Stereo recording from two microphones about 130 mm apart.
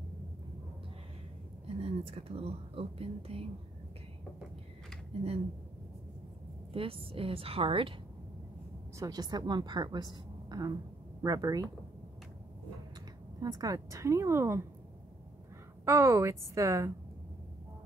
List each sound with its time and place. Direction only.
1.8 s speech: 50° right (ahead or behind)
6.7 s speech: 45° right (ahead or behind)
8.9 s a woman's voice: 30° right (ahead or behind)
13.4 s a woman's voice: 30° right (ahead or behind)
15.8 s a woman's voice: 20° right (ahead or behind)